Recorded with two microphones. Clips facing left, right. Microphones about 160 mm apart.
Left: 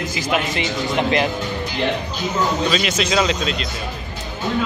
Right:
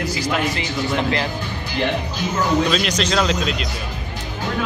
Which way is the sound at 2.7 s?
5° left (ahead or behind).